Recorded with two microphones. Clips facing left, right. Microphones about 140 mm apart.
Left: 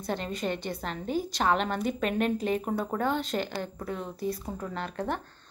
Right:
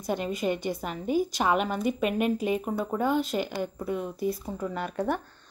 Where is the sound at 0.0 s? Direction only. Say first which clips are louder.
Right 3 dB; 10° right (ahead or behind).